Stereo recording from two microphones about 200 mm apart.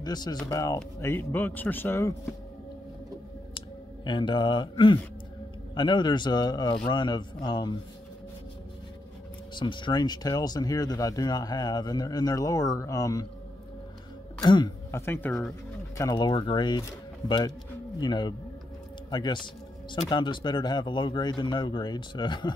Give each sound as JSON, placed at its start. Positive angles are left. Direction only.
{"t": 0.0, "sound": "speech", "side_deg": 20}
{"t": 3.5, "sound": "speech", "side_deg": 25}
{"t": 9.6, "sound": "speech", "side_deg": 25}
{"t": 14.4, "sound": "speech", "side_deg": 20}
{"t": 16.0, "sound": "speech", "side_deg": 20}